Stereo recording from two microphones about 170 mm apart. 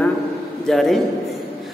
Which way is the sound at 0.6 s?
Centre (ahead or behind).